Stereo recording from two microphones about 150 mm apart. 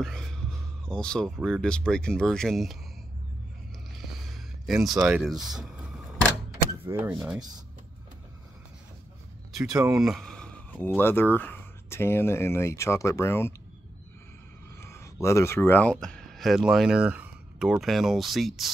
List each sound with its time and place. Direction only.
0.0 s speech: 5° left (ahead or behind)
3.9 s a sound: centre (ahead or behind)
6.7 s speech: 15° right (ahead or behind)
9.6 s speech: 5° right (ahead or behind); by 13.6 s 15° left (ahead or behind)
14.8 s a sound: 20° left (ahead or behind)
15.2 s speech: 20° left (ahead or behind); by 18.7 s centre (ahead or behind)